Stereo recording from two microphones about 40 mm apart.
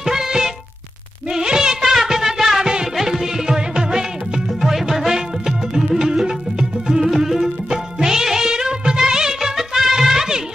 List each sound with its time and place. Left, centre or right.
0.0 s music: centre
1.3 s a sound: centre
1.8 s music: centre